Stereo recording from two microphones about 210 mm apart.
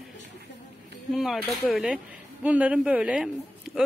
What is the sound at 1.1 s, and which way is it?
A man's voice, centre (ahead or behind).